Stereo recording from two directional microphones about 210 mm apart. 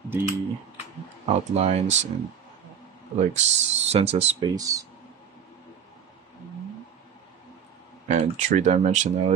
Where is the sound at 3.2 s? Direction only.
30° right (ahead or behind).